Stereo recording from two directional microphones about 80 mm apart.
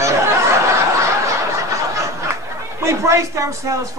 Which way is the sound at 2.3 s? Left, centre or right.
Right.